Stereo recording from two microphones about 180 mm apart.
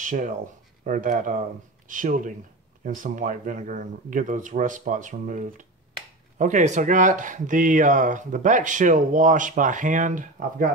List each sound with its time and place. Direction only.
0.0 s speech: 45° right (ahead or behind)